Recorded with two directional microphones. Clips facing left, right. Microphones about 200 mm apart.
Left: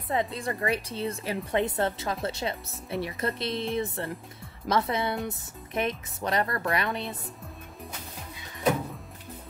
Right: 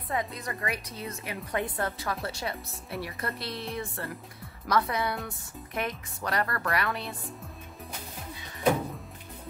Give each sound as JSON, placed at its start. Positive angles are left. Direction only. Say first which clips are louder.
{"t": 0.1, "sound": "a woman's voice", "louder": "left 4 dB", "side_deg": 30}